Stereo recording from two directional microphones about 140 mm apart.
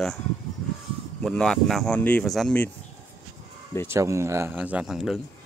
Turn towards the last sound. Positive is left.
turn(degrees=-5)  # may be behind; listen again after turning